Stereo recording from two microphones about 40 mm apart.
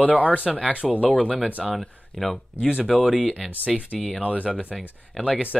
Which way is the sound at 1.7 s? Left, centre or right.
Centre.